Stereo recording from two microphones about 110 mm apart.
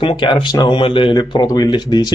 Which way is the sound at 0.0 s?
45° left (ahead or behind).